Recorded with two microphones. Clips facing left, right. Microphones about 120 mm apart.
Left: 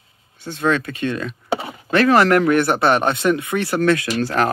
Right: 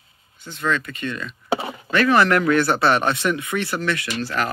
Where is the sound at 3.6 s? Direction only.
40° left (ahead or behind).